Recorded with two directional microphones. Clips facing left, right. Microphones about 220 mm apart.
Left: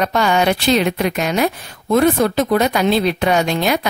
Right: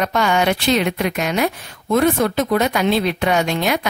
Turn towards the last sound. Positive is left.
turn(degrees=35)  # may be behind; listen again after turning